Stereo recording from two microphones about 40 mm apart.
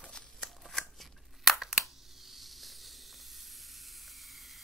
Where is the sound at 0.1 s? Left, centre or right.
Centre.